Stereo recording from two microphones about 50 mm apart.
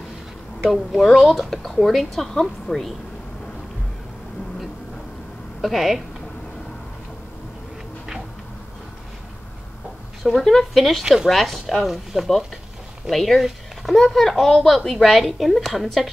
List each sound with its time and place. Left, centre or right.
0.7 s speech: centre
5.6 s speech: centre
10.2 s speech: centre
11.1 s speech: centre
11.3 s speech: centre